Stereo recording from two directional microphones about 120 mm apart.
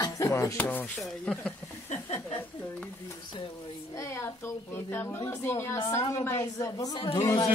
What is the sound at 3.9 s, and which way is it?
A woman's voice, 25° left (ahead or behind).